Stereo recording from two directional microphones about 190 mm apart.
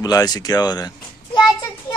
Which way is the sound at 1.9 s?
20° left (ahead or behind).